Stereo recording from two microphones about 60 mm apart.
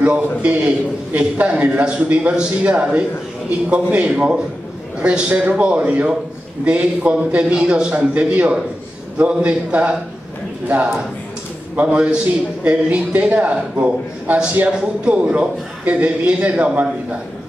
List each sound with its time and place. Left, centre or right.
0.0 s a man's voice: right
11.7 s a man's voice: right